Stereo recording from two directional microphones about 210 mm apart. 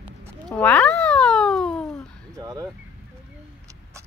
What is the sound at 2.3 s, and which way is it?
Speech, 20° right (ahead or behind).